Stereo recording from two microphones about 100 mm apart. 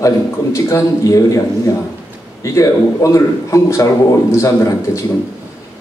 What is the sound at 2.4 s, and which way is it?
A man's voice, 30° left (ahead or behind).